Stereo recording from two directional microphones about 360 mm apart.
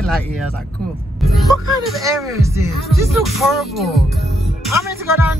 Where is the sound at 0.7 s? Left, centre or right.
Centre.